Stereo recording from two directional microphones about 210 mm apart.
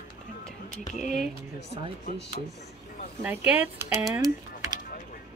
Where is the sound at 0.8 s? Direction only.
35° left (ahead or behind).